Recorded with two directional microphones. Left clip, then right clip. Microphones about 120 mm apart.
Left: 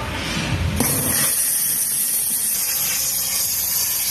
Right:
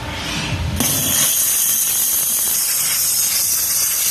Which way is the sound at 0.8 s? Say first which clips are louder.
Right 5 dB; 15° right (ahead or behind).